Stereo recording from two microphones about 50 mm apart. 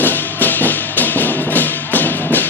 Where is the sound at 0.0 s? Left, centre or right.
Left.